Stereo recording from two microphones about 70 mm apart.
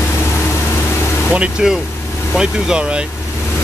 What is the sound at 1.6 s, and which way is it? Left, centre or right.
Speech, centre.